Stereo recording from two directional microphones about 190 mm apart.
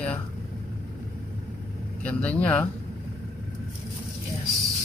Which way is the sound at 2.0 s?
5° left (ahead or behind).